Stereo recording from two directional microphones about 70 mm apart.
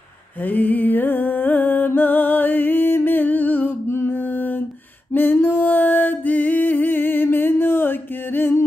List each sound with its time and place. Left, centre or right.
0.4 s music: left